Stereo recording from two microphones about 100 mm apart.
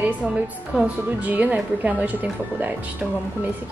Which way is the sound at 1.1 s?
15° right (ahead or behind).